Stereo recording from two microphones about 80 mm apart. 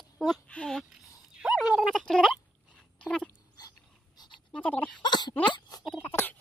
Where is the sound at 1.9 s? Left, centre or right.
Centre.